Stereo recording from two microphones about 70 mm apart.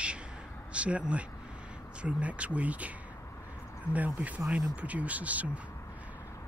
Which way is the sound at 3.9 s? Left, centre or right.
Right.